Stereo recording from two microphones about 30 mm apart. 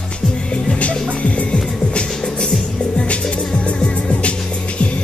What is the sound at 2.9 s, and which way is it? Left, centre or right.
Music, left.